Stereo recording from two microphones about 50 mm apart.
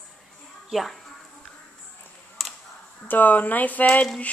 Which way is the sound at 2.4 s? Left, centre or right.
Centre.